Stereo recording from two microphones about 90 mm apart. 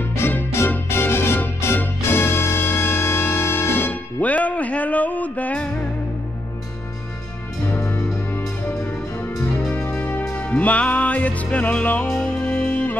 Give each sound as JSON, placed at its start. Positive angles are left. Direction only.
{"t": 0.0, "sound": "music", "side_deg": 25}
{"t": 7.7, "sound": "music", "side_deg": 20}
{"t": 9.8, "sound": "music", "side_deg": 20}